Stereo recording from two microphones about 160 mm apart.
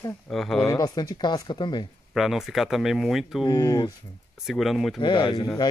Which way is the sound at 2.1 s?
Centre (ahead or behind).